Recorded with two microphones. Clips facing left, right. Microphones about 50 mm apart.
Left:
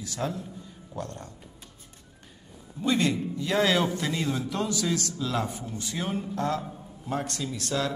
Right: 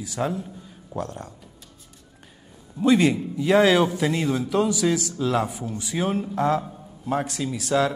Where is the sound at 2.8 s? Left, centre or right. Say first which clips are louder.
Right 7 dB; centre.